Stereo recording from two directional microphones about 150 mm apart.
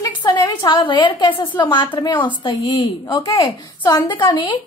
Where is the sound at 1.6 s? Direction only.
30° left (ahead or behind).